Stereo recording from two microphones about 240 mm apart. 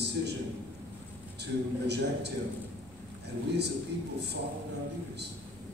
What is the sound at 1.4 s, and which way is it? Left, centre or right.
Speech, right.